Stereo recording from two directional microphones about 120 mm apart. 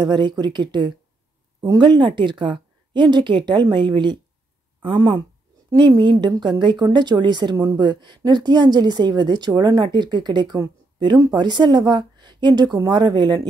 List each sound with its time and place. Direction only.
0.0 s speech: 40° right (ahead or behind)